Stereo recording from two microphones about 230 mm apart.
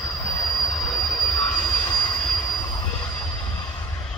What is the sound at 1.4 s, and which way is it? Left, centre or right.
Train wheels squealing, centre.